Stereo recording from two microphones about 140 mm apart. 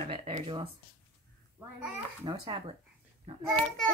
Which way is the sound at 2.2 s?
30° right (ahead or behind).